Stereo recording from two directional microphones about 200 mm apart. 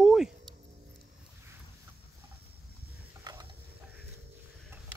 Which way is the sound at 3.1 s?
20° right (ahead or behind).